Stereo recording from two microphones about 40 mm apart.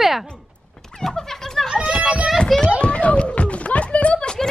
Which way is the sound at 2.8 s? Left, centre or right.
Left.